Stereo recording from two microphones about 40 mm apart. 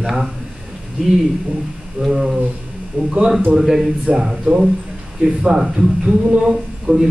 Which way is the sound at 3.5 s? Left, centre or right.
Centre.